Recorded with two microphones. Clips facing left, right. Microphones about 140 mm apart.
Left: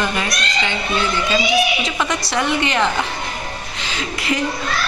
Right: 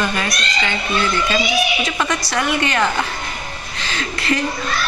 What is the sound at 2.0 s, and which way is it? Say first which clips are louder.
Speech: even; 20° left (ahead or behind).